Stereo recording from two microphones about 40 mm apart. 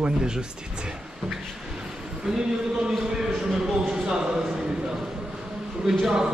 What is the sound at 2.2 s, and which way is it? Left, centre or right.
Speech, centre.